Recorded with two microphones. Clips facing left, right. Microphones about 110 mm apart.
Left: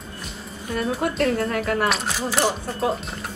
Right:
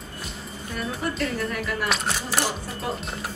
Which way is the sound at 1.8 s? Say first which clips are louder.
Left 3 dB; centre (ahead or behind).